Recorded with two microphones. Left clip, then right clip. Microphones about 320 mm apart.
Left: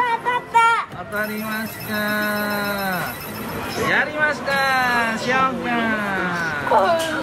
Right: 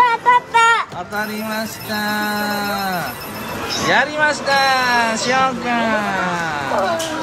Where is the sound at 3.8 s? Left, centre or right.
Centre.